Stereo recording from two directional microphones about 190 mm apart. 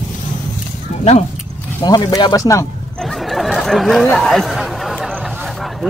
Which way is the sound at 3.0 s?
Centre (ahead or behind).